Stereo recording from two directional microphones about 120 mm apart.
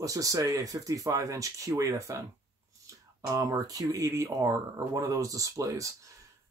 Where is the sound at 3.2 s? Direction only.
30° right (ahead or behind).